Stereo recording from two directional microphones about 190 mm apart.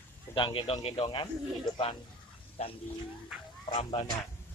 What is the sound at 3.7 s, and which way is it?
Speech, 30° left (ahead or behind).